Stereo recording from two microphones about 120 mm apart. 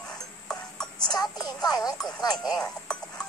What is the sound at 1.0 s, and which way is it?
Speech, 35° left (ahead or behind).